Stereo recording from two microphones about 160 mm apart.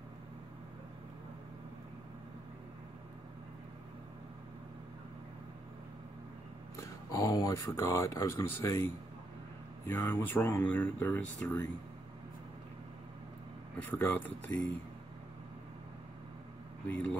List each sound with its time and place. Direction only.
6.8 s speech: 20° left (ahead or behind)
13.8 s speech: 10° left (ahead or behind)
16.8 s speech: 10° left (ahead or behind)